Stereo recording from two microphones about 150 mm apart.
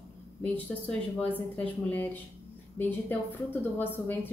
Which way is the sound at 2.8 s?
15° left (ahead or behind).